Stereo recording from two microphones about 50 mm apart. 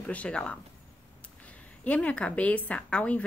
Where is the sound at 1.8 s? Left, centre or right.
Left.